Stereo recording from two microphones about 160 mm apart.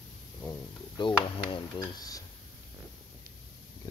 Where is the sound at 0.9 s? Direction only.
30° left (ahead or behind).